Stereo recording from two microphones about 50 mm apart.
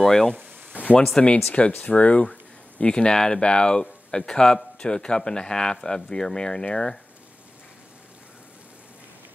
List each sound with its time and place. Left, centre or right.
0.0 s speech: centre
1.1 s speech: left